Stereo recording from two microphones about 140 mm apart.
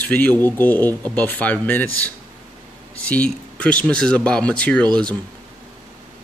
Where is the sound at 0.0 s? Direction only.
10° left (ahead or behind).